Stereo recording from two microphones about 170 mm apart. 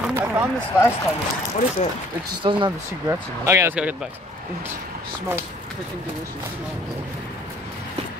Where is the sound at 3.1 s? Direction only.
15° right (ahead or behind).